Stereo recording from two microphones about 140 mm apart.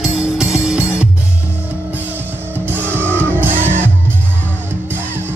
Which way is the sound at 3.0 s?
10° left (ahead or behind).